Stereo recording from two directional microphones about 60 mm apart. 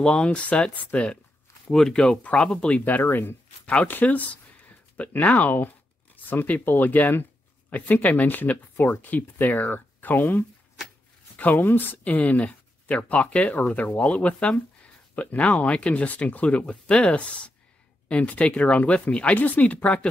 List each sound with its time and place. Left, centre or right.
0.0 s speech: centre
2.8 s speech: left
3.6 s speech: left